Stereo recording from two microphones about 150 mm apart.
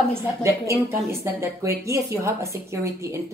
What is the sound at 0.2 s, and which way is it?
A woman's voice, 20° right (ahead or behind).